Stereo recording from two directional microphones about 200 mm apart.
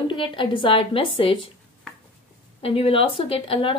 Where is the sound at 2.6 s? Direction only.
30° left (ahead or behind).